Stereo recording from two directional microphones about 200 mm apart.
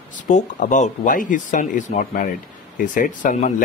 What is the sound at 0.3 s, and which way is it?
A man's voice, 35° left (ahead or behind).